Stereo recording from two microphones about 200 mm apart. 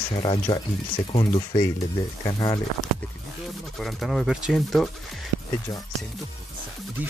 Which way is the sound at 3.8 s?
Centre (ahead or behind).